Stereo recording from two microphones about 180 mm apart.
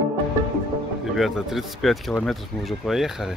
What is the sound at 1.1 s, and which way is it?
Speech, centre (ahead or behind).